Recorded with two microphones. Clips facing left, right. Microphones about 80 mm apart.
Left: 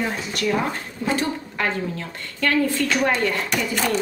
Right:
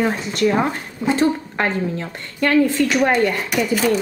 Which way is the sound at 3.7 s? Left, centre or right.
Centre.